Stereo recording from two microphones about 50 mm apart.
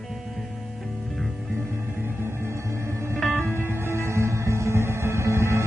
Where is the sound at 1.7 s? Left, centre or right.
Right.